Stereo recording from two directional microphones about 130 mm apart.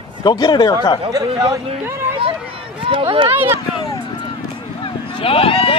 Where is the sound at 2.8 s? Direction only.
40° right (ahead or behind).